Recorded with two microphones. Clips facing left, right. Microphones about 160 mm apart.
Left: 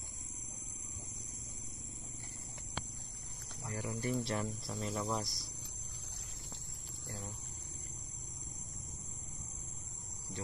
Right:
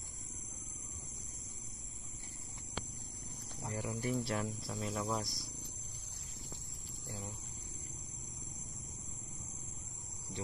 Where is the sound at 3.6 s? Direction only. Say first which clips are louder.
Right 1 dB; 20° right (ahead or behind).